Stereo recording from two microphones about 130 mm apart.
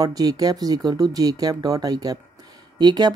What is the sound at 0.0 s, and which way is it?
Speech, 30° right (ahead or behind).